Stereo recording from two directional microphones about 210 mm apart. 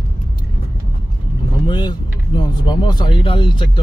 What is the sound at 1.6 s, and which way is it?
Vehicle, 20° left (ahead or behind).